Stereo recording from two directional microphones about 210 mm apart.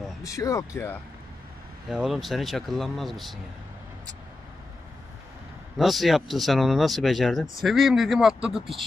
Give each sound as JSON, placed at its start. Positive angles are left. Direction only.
{"t": 0.2, "sound": "speech", "side_deg": 15}
{"t": 1.9, "sound": "speech", "side_deg": 0}
{"t": 5.8, "sound": "speech", "side_deg": 0}